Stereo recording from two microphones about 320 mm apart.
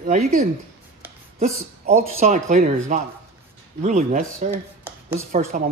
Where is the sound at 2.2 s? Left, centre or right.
Right.